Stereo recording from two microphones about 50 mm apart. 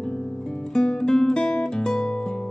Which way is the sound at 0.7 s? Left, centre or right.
Centre.